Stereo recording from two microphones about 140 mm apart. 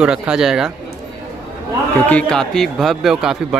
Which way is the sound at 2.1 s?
5° left (ahead or behind).